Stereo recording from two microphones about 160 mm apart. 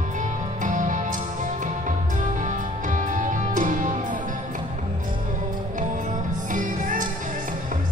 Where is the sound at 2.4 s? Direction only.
50° right (ahead or behind).